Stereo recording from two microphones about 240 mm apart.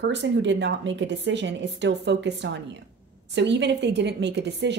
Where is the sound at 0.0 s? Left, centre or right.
Right.